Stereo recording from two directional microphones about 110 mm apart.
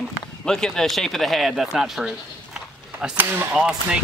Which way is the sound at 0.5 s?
5° left (ahead or behind).